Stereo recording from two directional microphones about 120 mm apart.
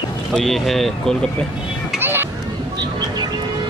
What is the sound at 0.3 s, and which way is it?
Speech, 5° left (ahead or behind).